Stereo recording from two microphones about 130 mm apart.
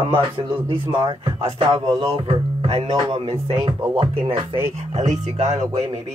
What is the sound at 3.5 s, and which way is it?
Speech, 40° right (ahead or behind).